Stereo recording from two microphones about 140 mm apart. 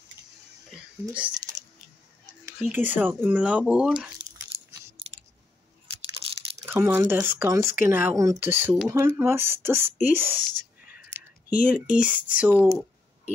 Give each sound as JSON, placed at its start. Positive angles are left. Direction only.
{"t": 0.7, "sound": "a sound", "side_deg": -5}
{"t": 2.6, "sound": "speech", "side_deg": -10}
{"t": 4.2, "sound": "chewing", "side_deg": -45}
{"t": 6.2, "sound": "crumpling", "side_deg": 0}
{"t": 6.6, "sound": "speech", "side_deg": -15}
{"t": 11.1, "sound": "a sound", "side_deg": -15}
{"t": 11.9, "sound": "speech", "side_deg": -10}